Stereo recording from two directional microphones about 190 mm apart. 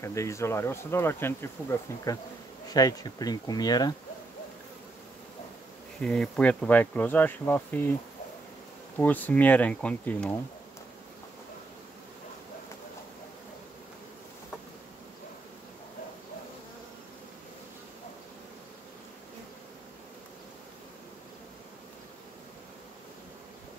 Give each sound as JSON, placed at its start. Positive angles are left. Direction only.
{"t": 0.0, "sound": "speech", "side_deg": 15}
{"t": 2.7, "sound": "speech", "side_deg": 20}
{"t": 5.9, "sound": "speech", "side_deg": 5}